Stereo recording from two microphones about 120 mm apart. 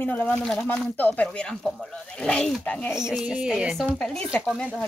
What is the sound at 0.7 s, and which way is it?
Speech, 15° left (ahead or behind).